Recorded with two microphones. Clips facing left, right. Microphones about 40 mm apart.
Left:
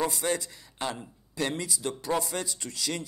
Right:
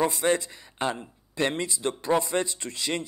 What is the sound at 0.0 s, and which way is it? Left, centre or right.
A man's voice, right.